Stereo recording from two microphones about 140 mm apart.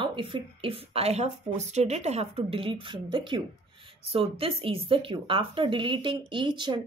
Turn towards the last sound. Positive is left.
turn(degrees=-35)  # may be behind; listen again after turning